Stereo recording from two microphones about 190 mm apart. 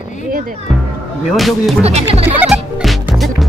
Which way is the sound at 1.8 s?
35° right (ahead or behind).